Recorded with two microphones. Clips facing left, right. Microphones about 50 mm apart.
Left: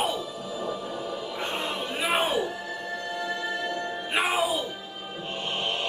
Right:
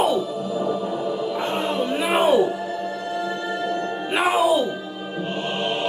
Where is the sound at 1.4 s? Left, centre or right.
Centre.